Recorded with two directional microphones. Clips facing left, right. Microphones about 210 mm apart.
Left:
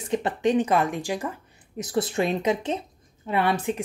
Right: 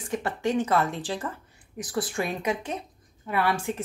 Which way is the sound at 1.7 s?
25° left (ahead or behind).